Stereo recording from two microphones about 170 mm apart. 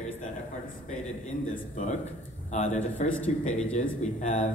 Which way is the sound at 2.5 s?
45° left (ahead or behind).